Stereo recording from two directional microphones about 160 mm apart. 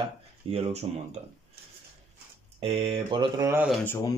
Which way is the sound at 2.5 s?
35° right (ahead or behind).